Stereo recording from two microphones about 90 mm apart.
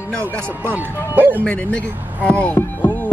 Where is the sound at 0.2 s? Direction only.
20° right (ahead or behind).